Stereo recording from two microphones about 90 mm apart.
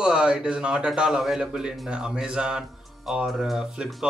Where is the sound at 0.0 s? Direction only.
10° right (ahead or behind).